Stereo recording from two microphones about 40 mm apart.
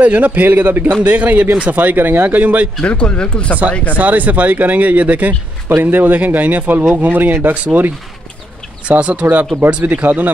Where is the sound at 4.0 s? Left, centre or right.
Right.